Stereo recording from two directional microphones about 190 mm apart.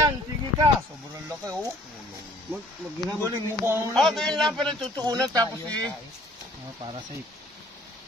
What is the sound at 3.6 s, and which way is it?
Speech, 15° right (ahead or behind).